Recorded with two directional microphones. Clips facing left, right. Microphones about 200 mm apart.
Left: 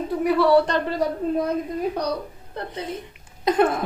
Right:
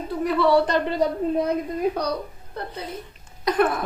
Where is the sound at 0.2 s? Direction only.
10° left (ahead or behind).